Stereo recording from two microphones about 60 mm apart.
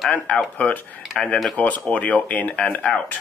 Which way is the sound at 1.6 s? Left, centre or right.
Left.